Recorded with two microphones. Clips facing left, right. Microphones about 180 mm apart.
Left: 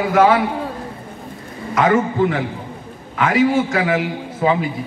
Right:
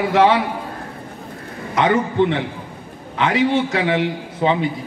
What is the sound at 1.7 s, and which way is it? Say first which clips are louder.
A man's voice: left 1 dB; 25° right (ahead or behind).